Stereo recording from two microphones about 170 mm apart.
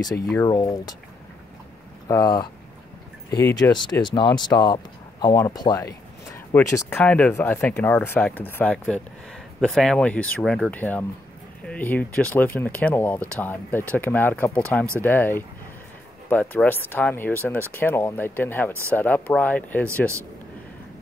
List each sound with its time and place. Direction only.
0.4 s speech: 20° left (ahead or behind)
2.0 s speech: 20° left (ahead or behind)
3.6 s speech: 15° left (ahead or behind)
4.0 s speech: 25° left (ahead or behind); by 19.9 s 10° left (ahead or behind)